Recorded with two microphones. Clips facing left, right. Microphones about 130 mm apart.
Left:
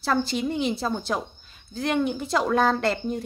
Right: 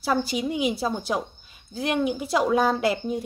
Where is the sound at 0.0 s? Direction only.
10° right (ahead or behind).